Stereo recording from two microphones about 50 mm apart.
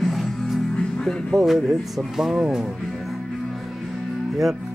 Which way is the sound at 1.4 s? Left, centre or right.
Centre.